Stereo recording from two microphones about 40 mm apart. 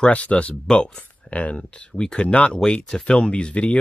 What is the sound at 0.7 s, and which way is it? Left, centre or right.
Speech, left.